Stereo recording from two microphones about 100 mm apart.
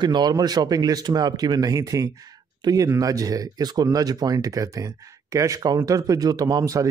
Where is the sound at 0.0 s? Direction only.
45° right (ahead or behind).